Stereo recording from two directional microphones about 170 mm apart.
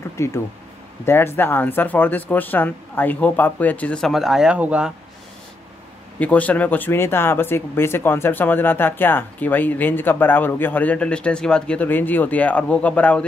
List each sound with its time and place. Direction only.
0.2 s speech: 15° left (ahead or behind); by 4.9 s 5° right (ahead or behind)
6.1 s speech: 10° left (ahead or behind)